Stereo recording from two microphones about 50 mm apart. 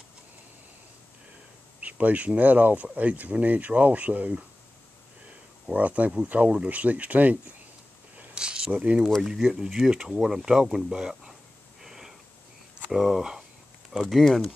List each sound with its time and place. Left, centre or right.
1.8 s speech: right
5.7 s speech: right
8.4 s a sound: centre
8.7 s speech: right
9.2 s speech: centre
11.8 s a sound: centre
12.9 s speech: centre
14.0 s speech: centre